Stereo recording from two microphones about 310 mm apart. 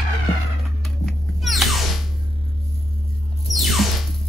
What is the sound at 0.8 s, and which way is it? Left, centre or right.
Music, centre.